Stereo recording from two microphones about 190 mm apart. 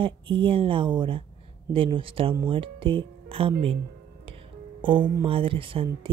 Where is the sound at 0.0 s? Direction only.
25° right (ahead or behind).